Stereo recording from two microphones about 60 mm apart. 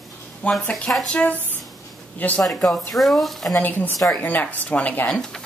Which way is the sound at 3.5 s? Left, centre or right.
Left.